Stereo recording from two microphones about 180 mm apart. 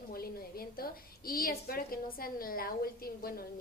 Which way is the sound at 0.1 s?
55° left (ahead or behind).